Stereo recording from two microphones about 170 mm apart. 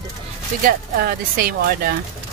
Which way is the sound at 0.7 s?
60° right (ahead or behind).